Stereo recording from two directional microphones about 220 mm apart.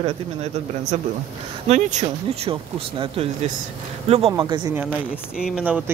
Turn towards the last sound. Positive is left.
turn(degrees=-5)  # may be behind; listen again after turning